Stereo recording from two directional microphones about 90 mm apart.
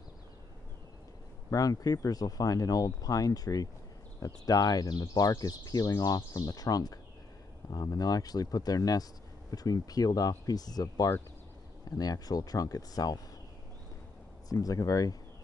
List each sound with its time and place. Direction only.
1.5 s speech: 40° left (ahead or behind)
14.5 s speech: 40° left (ahead or behind)